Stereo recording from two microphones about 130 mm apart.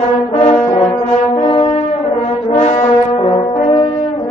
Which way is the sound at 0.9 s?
40° left (ahead or behind).